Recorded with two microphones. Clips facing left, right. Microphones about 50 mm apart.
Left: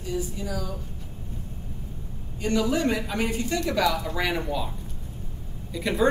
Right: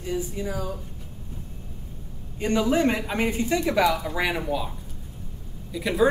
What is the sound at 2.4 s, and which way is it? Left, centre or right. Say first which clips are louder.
Speech: right 2 dB; right.